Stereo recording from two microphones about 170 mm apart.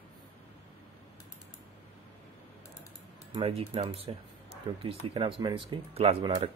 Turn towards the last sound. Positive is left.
turn(degrees=-35)  # may be behind; listen again after turning